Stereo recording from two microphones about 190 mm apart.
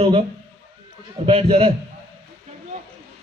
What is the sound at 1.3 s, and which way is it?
Speech, 30° right (ahead or behind).